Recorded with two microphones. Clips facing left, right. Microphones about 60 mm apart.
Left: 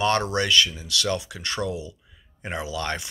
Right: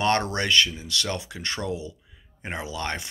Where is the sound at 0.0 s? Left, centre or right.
Right.